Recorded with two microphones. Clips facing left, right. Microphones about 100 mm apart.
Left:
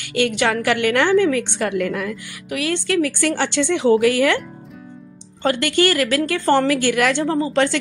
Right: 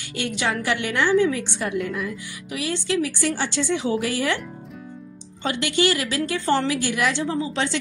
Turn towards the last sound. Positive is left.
turn(degrees=55)  # may be behind; listen again after turning